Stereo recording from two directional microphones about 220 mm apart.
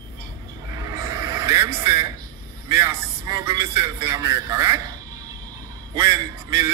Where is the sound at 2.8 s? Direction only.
15° right (ahead or behind).